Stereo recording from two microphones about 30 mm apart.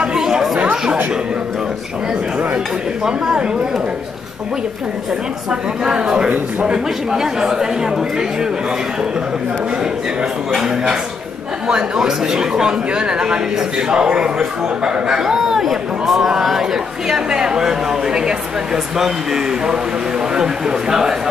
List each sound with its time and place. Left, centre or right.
0.2 s chatter: centre
5.5 s speech: right
11.6 s a man's voice: right
14.9 s speech: centre